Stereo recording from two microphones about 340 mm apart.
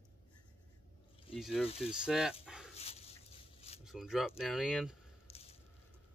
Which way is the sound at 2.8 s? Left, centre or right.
Centre.